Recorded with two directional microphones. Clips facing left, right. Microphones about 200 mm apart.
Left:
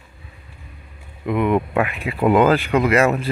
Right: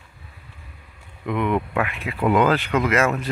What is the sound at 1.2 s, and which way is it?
Speech, 10° left (ahead or behind).